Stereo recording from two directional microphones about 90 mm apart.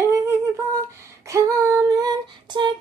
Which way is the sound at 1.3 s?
40° right (ahead or behind).